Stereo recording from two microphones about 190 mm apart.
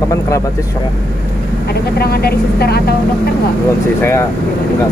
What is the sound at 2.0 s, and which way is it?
Speech, 55° left (ahead or behind).